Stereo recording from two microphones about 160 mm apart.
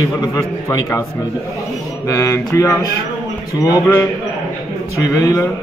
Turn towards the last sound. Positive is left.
turn(degrees=20)  # may be behind; listen again after turning